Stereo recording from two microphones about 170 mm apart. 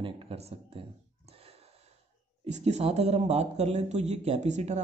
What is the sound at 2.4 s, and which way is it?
Speech, 40° right (ahead or behind).